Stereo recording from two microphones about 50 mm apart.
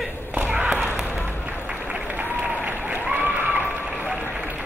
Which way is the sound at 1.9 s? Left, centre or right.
Right.